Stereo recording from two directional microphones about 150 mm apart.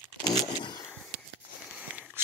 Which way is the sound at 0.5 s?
30° left (ahead or behind).